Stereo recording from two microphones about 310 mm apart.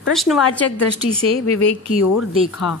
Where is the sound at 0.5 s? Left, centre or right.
Left.